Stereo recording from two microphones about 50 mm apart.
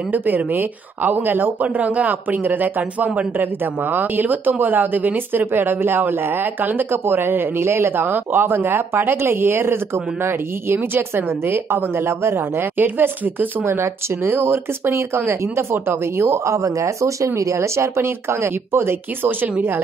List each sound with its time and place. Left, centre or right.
0.1 s speech: right
7.6 s speech: right
12.7 s speech: right
13.7 s speech: right
14.2 s speech: right
15.7 s speech: right